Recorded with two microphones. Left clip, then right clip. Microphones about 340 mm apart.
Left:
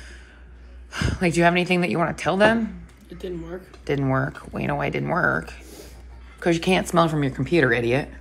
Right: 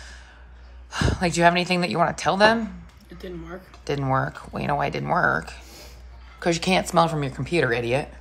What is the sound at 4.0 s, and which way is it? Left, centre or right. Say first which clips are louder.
Speech: right 2 dB; right.